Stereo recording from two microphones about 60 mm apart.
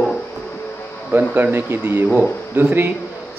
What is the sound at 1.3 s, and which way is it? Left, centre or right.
Speech, right.